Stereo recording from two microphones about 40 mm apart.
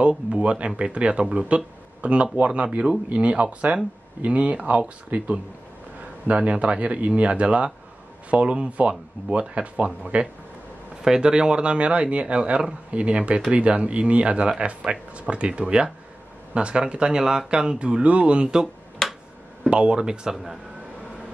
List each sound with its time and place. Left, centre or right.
0.3 s a man's voice: right
11.0 s a man's voice: centre
19.0 s finger snapping: centre
19.7 s speech: right